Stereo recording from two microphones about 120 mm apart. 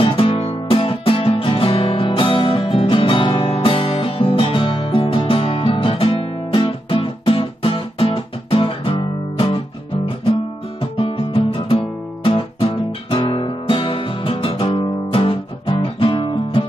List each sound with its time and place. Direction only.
0.0 s music: 50° left (ahead or behind)
10.8 s guitar: 50° left (ahead or behind)